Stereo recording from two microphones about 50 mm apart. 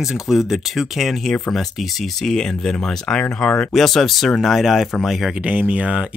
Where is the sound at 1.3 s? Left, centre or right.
Centre.